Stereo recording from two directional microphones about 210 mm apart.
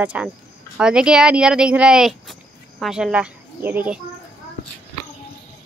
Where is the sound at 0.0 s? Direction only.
5° right (ahead or behind).